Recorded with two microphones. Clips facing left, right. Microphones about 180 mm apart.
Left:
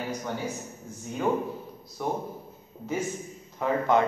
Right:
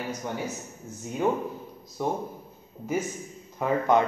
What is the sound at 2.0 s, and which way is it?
Speech, 15° right (ahead or behind).